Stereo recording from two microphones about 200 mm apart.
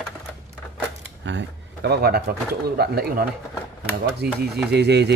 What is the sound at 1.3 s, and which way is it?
Speech, 60° right (ahead or behind).